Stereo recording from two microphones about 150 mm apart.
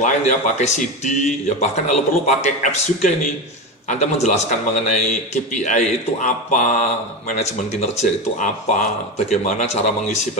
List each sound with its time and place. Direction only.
0.0 s a man's voice: 50° left (ahead or behind)